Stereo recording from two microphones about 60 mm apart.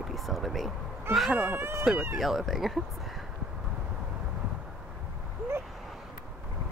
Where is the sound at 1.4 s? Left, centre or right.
Right.